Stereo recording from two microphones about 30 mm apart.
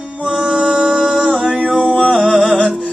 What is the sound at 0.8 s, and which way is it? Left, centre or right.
Music, centre.